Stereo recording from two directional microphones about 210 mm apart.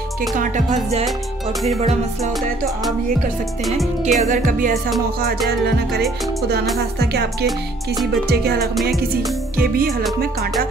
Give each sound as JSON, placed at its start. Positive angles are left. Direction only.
{"t": 0.4, "sound": "music", "side_deg": -35}
{"t": 4.0, "sound": "music", "side_deg": -35}
{"t": 8.3, "sound": "music", "side_deg": -50}